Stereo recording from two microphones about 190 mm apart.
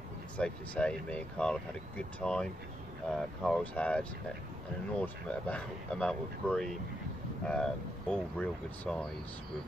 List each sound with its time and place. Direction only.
0.4 s speech: 5° left (ahead or behind)
5.0 s speech: 5° left (ahead or behind)